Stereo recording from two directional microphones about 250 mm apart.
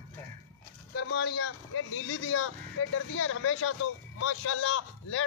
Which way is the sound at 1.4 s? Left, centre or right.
Left.